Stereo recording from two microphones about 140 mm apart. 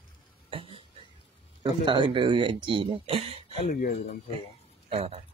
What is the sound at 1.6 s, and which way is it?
Speech, 35° right (ahead or behind).